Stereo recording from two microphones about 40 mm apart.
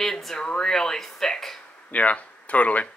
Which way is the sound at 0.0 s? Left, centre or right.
Centre.